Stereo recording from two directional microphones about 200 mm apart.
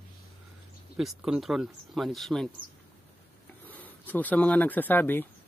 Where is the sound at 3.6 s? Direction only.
10° left (ahead or behind).